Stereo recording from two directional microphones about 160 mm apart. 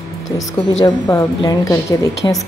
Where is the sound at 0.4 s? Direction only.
20° left (ahead or behind).